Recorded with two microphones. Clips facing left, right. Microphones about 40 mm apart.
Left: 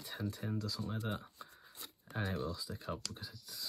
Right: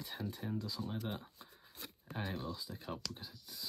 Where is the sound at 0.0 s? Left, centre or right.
Centre.